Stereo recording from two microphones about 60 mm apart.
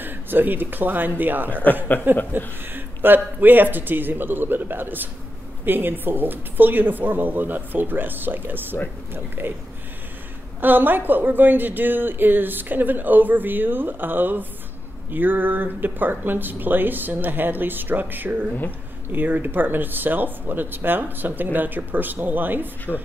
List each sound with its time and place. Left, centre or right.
0.0 s a woman's voice: right
10.6 s a woman's voice: right
22.9 s speech: left